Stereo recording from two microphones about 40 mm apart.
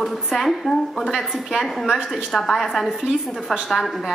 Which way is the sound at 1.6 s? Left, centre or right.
Centre.